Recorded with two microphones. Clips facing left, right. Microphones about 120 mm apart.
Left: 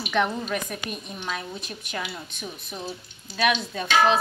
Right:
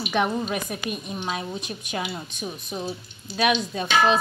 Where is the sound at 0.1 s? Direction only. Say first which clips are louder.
Even; 15° right (ahead or behind).